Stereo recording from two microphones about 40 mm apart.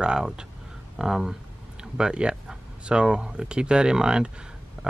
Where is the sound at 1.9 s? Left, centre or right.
Right.